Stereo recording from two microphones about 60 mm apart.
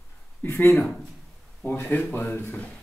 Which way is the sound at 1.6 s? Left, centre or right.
Left.